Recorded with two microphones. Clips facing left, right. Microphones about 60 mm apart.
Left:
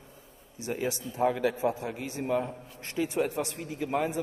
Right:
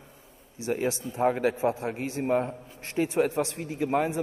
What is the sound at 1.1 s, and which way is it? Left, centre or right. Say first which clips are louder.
A man's voice: right 1 dB; right.